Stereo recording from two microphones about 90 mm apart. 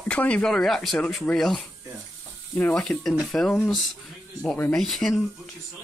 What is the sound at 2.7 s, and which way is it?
Speech, 10° left (ahead or behind).